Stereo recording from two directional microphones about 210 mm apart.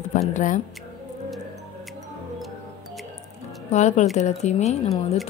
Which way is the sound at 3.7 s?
35° left (ahead or behind).